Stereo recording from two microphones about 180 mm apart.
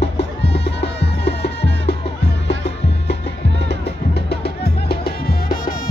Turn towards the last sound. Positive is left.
turn(degrees=55)  # may be behind; listen again after turning